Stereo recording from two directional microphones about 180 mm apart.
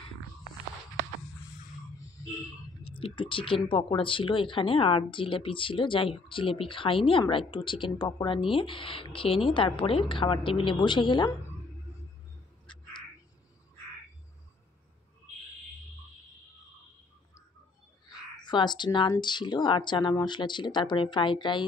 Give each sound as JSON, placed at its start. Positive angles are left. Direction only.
{"t": 3.0, "sound": "a woman's voice", "side_deg": 30}
{"t": 18.4, "sound": "a woman's voice", "side_deg": 25}